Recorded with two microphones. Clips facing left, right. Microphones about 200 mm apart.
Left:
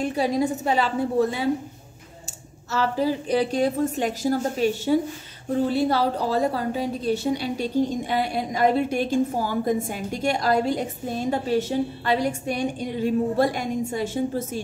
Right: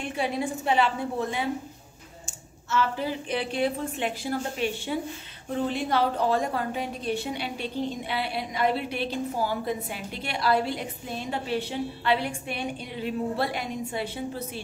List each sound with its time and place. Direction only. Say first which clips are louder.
0.0 s a woman's voice: left 6 dB; 40° left (ahead or behind)
2.7 s a woman's voice: left 4 dB; 40° left (ahead or behind)